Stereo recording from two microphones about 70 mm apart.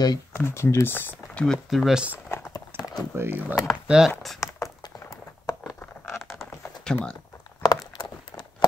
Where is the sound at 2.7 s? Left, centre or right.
Right.